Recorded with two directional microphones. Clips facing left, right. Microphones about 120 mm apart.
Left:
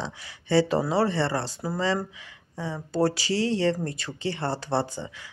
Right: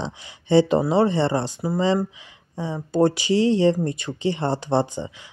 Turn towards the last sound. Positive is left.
turn(degrees=-20)  # may be behind; listen again after turning